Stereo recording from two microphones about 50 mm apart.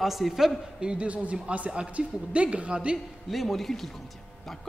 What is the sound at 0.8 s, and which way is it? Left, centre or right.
A man's voice, right.